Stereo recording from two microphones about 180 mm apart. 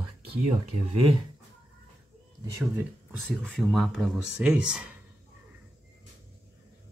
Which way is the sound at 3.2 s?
Centre (ahead or behind).